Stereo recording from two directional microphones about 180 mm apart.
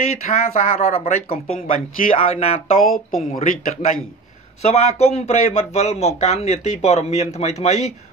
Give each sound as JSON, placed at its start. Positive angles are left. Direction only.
{"t": 0.2, "sound": "speech", "side_deg": 40}